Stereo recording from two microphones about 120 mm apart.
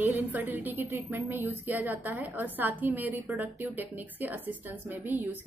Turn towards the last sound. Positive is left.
turn(degrees=-15)  # may be behind; listen again after turning